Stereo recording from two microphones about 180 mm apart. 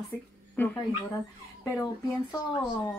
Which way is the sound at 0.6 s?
10° left (ahead or behind).